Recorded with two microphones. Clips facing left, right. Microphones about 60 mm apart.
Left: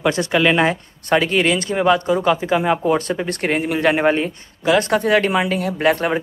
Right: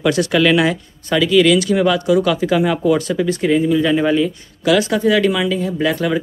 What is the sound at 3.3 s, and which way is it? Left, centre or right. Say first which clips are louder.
Speech: right 5 dB; left.